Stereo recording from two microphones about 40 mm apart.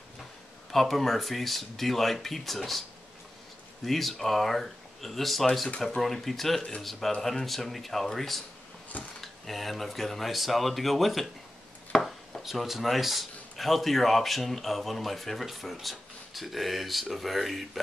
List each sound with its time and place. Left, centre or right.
0.7 s speech: centre
3.8 s speech: centre